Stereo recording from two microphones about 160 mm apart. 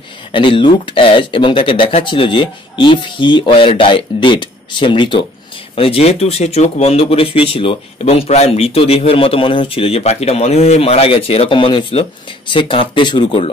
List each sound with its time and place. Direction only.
0.3 s speech: 30° left (ahead or behind)